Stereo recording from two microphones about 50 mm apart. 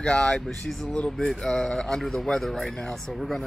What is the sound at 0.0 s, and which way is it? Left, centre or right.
Speech, centre.